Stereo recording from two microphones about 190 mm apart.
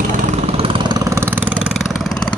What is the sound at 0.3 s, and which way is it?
Vehicle, 30° right (ahead or behind).